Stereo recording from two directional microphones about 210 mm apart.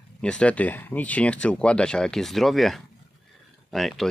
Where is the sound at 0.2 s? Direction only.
5° left (ahead or behind).